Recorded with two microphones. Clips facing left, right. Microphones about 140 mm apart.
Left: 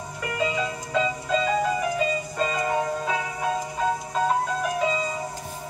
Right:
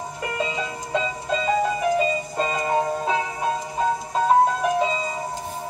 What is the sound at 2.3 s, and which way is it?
Music, 25° right (ahead or behind).